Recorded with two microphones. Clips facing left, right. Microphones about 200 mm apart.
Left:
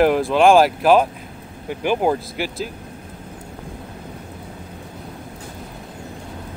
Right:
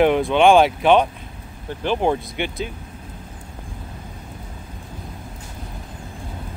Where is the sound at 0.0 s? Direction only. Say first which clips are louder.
Even; centre (ahead or behind).